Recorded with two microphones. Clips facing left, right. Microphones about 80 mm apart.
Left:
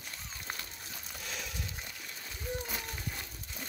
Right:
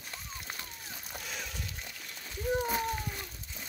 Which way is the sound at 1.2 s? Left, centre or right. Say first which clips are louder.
Even; centre.